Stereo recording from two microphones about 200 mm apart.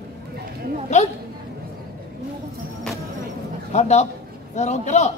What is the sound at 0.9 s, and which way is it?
Speech, 35° left (ahead or behind).